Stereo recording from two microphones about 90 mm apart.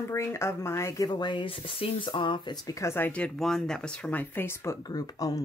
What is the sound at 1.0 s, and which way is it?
Speech, 55° left (ahead or behind).